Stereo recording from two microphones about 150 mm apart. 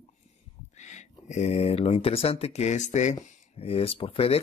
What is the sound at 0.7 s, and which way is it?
Speech, 50° left (ahead or behind).